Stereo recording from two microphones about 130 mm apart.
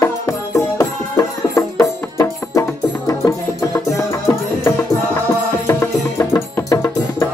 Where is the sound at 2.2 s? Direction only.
25° left (ahead or behind).